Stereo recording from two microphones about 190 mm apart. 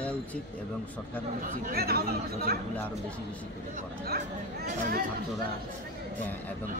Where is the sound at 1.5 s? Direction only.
50° right (ahead or behind).